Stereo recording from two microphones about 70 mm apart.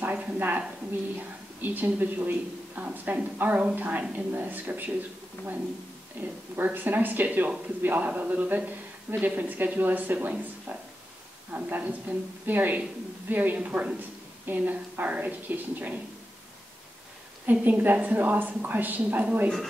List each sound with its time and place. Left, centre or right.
0.0 s a woman's voice: right
5.4 s speech: left
6.2 s speech: right
17.5 s speech: right